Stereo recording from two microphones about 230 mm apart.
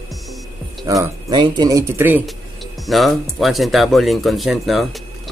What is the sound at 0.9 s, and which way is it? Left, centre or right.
Speech, centre.